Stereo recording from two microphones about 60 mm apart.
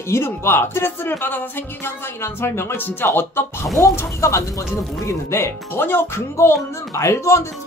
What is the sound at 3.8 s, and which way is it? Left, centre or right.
Speech, left.